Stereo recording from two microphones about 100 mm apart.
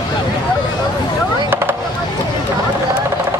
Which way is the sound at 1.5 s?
20° right (ahead or behind).